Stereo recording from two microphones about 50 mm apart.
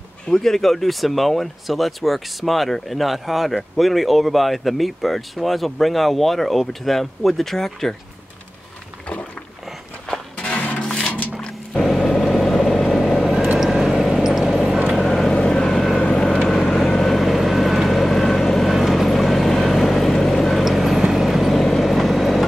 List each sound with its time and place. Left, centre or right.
0.3 s speech: centre
10.3 s music: left
10.8 s a sound: centre
11.8 s vehicle: centre
14.5 s clip-clop: centre
15.0 s vehicle: centre
16.4 s vehicle: centre